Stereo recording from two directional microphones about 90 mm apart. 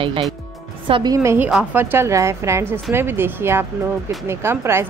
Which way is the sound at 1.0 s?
35° right (ahead or behind).